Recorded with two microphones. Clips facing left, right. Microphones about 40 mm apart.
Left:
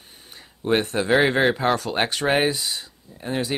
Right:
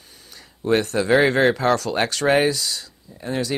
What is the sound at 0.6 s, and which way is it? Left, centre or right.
Speech, left.